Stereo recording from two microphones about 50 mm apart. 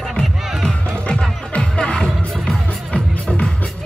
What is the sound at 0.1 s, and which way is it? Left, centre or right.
Music, centre.